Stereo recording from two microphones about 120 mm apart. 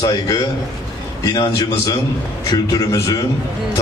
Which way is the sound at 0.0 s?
35° left (ahead or behind).